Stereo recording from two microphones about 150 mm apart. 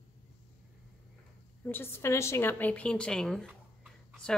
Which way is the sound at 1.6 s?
15° left (ahead or behind).